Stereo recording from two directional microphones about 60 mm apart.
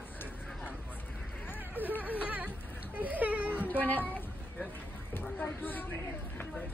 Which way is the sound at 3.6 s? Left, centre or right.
Left.